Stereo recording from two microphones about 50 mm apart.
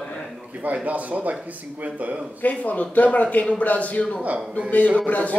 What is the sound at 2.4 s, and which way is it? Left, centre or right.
A man's voice, left.